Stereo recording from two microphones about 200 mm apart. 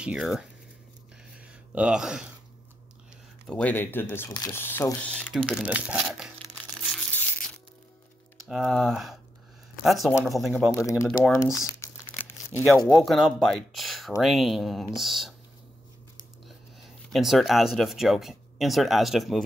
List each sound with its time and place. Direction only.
0.0 s speech: 5° right (ahead or behind)
1.4 s a sound: 5° right (ahead or behind)
3.4 s speech: 5° left (ahead or behind)
8.4 s speech: centre (ahead or behind)
10.7 s speech: 15° left (ahead or behind)
11.1 s speech: centre (ahead or behind)
11.6 s crumpling: 10° left (ahead or behind)
12.7 s speech: 10° left (ahead or behind)
13.0 s speech: centre (ahead or behind)
17.1 s speech: centre (ahead or behind)